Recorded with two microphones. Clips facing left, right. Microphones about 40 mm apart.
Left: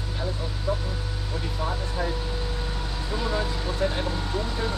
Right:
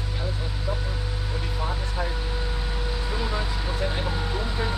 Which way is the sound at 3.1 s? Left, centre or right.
Centre.